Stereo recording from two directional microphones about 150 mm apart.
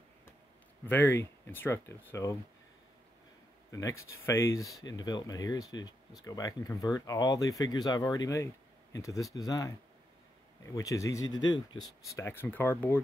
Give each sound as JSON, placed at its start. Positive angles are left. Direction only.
{"t": 0.8, "sound": "speech", "side_deg": 15}
{"t": 3.7, "sound": "speech", "side_deg": 20}
{"t": 12.3, "sound": "speech", "side_deg": 15}